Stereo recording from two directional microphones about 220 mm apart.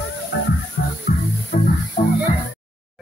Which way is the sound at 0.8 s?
45° left (ahead or behind).